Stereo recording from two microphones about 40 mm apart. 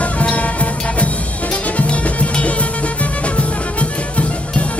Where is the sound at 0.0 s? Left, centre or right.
Left.